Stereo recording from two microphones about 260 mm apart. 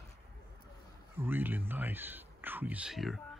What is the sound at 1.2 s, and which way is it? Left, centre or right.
Speech, centre.